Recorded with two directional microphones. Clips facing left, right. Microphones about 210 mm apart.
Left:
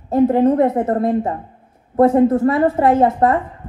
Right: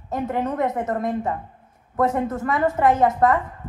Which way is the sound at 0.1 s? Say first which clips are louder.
Left 11 dB; 30° left (ahead or behind).